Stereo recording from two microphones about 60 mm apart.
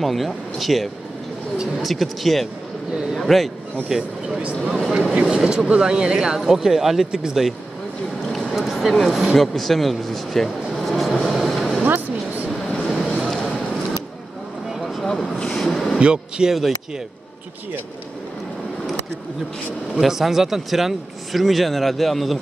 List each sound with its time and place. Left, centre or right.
0.0 s speech: centre
2.9 s speech: centre
3.2 s speech: centre
4.4 s speech: centre
9.3 s vehicle: centre
11.8 s a sound: right
12.8 s a sound: centre
15.0 s vehicle: centre
16.0 s speech: centre
20.0 s speech: centre